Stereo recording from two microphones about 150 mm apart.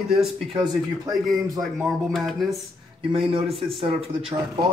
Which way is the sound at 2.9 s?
35° right (ahead or behind).